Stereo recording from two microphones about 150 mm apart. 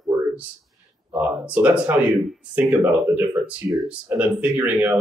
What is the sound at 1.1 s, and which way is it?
Speech, 10° right (ahead or behind).